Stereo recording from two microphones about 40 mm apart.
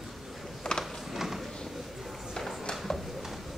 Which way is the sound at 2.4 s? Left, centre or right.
Centre.